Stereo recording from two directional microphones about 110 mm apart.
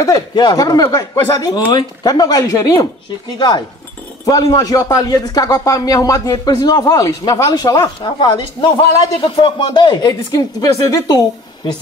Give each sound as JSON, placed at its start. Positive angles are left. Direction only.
{"t": 0.3, "sound": "speech", "side_deg": 45}
{"t": 8.0, "sound": "speech", "side_deg": 45}
{"t": 9.7, "sound": "speech", "side_deg": 40}